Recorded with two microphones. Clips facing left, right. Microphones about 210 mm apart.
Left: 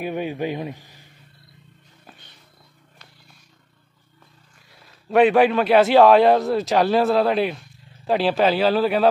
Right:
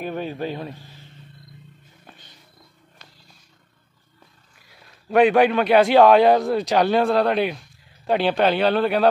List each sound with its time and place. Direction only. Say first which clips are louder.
0.0 s speech: left 2 dB; 15° left (ahead or behind)
4.6 s a man's voice: even; centre (ahead or behind)